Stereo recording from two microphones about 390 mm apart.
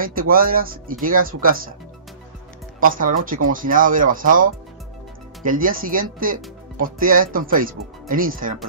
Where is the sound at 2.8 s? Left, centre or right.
Right.